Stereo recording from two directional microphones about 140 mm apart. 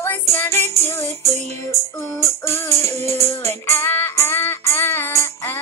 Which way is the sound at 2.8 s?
50° right (ahead or behind).